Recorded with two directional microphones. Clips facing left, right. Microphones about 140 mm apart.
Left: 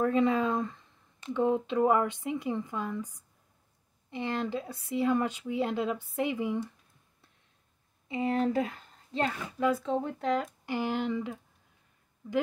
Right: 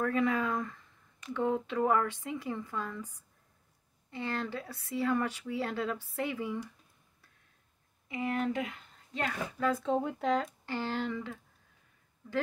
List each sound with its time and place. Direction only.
0.0 s speech: 25° left (ahead or behind)
8.1 s speech: 30° left (ahead or behind)
9.8 s speech: 5° right (ahead or behind)
10.6 s speech: 15° left (ahead or behind)